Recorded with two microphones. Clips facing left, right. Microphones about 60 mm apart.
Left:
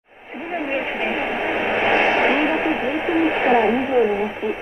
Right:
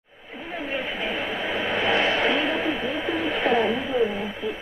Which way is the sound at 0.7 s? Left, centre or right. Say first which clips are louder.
Left 4 dB; left.